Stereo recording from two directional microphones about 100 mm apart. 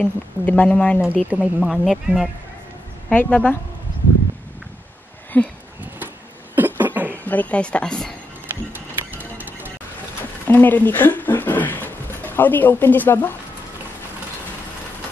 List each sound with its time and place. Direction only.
0.0 s speech: 15° left (ahead or behind)
1.3 s speech: 10° right (ahead or behind)
3.1 s speech: 15° left (ahead or behind)
5.3 s speech: 15° left (ahead or behind)
6.5 s a sound: 20° right (ahead or behind)
7.2 s speech: 15° left (ahead or behind)
8.7 s music: 20° right (ahead or behind)
10.4 s speech: 20° left (ahead or behind)